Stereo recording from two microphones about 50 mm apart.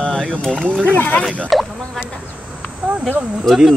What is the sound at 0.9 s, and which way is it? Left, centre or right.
Speech, left.